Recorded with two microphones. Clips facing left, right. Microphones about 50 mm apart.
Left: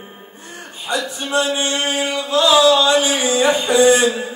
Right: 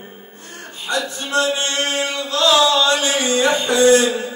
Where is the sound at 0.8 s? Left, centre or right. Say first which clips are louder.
Left 1 dB; centre.